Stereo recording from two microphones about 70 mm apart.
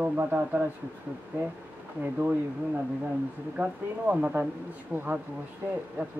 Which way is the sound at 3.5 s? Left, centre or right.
Centre.